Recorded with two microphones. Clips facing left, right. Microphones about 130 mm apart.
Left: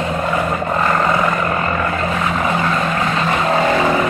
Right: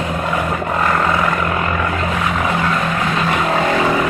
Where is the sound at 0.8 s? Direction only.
5° left (ahead or behind).